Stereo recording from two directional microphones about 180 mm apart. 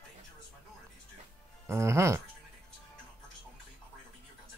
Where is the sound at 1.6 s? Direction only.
15° right (ahead or behind).